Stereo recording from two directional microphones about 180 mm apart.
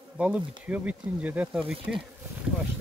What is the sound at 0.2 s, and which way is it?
Speech, 5° right (ahead or behind).